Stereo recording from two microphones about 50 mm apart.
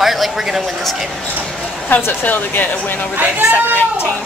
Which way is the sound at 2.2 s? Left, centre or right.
Left.